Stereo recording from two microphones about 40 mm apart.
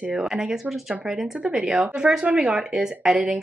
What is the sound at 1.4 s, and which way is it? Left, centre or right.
Speech, right.